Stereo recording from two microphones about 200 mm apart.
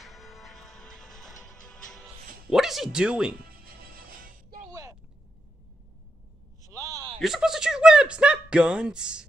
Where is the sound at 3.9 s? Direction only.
45° right (ahead or behind).